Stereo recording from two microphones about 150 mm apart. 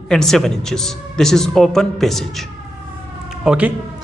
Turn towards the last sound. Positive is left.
turn(degrees=-5)  # may be behind; listen again after turning